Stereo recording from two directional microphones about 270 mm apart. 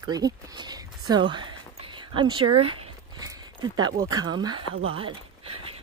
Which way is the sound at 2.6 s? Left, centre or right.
Centre.